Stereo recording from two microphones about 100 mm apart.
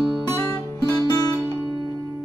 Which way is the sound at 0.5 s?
25° left (ahead or behind).